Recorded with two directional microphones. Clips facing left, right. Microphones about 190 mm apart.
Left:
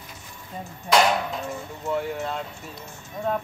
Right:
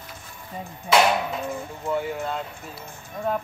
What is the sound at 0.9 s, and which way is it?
Speech, centre (ahead or behind).